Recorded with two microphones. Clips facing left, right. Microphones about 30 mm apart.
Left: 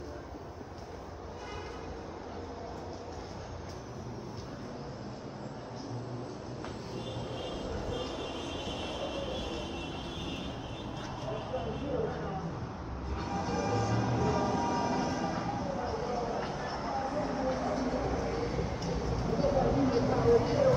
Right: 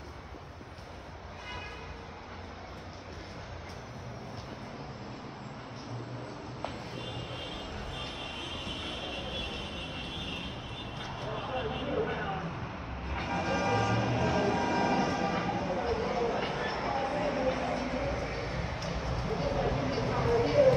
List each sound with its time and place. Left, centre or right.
7.4 s vehicle: right
11.4 s vehicle: right
13.1 s music: right